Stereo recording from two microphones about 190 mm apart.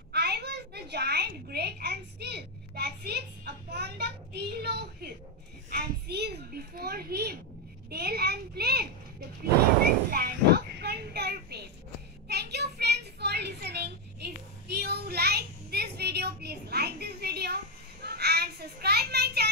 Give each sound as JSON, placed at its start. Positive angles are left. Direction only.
{"t": 0.1, "sound": "a woman's voice", "side_deg": -60}
{"t": 10.1, "sound": "child singing", "side_deg": -55}
{"t": 12.3, "sound": "a sound", "side_deg": -60}
{"t": 18.0, "sound": "children playing", "side_deg": -55}